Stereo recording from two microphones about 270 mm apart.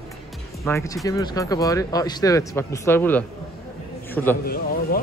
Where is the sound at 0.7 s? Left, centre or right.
Centre.